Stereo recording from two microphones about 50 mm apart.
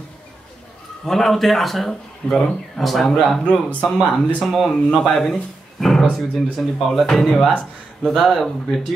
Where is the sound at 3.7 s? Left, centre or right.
Left.